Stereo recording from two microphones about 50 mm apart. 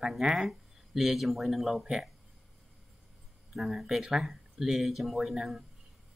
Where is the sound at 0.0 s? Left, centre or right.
Centre.